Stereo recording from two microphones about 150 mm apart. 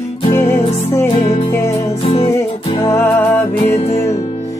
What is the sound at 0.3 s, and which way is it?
Music, 15° left (ahead or behind).